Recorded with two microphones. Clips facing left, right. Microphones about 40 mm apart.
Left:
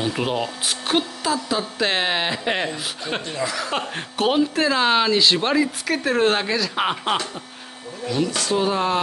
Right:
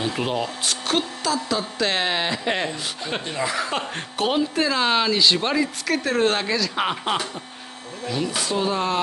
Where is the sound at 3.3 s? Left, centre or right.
Centre.